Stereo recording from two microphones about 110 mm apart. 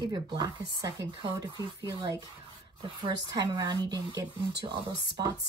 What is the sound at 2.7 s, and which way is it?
Speech, 50° right (ahead or behind).